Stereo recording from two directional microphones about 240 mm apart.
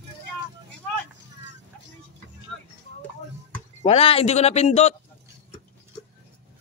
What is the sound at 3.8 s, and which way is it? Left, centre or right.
Speech, left.